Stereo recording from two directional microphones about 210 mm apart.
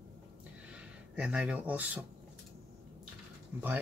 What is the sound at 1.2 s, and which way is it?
Speech, 5° right (ahead or behind).